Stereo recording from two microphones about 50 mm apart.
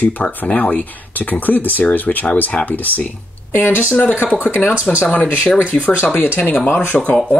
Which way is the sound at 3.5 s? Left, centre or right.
Left.